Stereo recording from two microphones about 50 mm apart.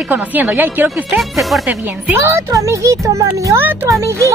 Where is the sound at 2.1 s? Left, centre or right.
Right.